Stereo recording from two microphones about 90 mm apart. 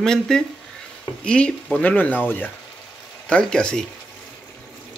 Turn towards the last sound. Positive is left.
turn(degrees=10)  # may be behind; listen again after turning